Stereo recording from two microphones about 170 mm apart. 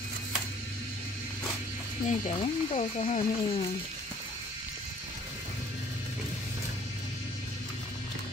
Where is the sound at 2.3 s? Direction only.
40° left (ahead or behind).